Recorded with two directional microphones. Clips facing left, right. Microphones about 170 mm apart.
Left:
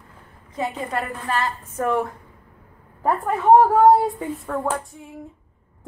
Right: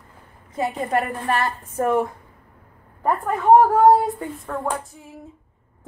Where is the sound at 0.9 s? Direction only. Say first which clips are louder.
Right 4 dB; 50° right (ahead or behind).